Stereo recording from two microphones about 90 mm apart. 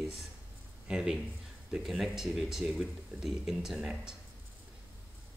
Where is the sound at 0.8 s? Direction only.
10° right (ahead or behind).